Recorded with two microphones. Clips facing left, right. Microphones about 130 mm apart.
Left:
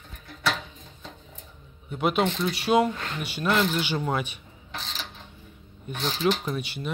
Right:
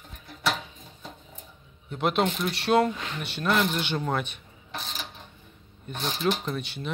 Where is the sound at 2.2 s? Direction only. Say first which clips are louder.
Even; 10° right (ahead or behind).